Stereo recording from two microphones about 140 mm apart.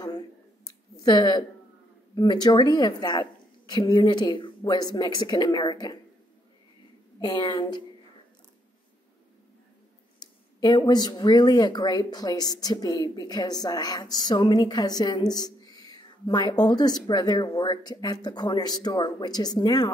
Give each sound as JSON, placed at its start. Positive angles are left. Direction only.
{"t": 0.7, "sound": "a sound", "side_deg": 30}
{"t": 2.1, "sound": "a woman's voice", "side_deg": 30}
{"t": 7.2, "sound": "a woman's voice", "side_deg": 30}
{"t": 10.2, "sound": "speech", "side_deg": 30}